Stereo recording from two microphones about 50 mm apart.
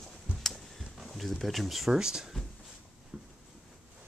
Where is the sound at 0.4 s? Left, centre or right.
Centre.